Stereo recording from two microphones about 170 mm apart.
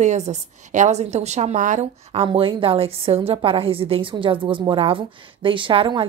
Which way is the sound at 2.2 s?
30° right (ahead or behind).